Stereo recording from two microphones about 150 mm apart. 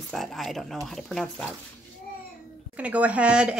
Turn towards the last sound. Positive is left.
turn(degrees=-5)  # may be behind; listen again after turning